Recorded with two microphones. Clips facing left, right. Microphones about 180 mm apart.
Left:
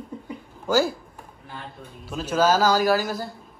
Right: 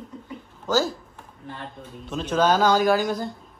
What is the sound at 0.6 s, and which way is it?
Speech, 10° left (ahead or behind).